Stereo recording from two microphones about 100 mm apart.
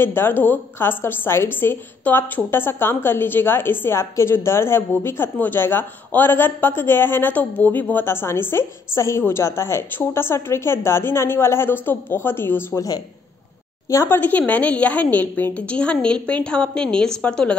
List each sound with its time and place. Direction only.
0.0 s a woman's voice: 20° left (ahead or behind)
13.8 s speech: 25° left (ahead or behind); by 17.6 s 10° left (ahead or behind)